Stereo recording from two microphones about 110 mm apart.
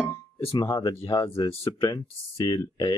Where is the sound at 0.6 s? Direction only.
40° left (ahead or behind).